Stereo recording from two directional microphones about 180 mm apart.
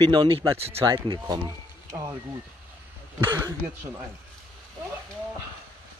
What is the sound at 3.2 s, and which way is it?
Speech, 20° right (ahead or behind).